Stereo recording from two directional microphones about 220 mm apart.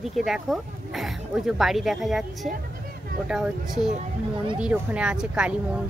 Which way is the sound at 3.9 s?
20° right (ahead or behind).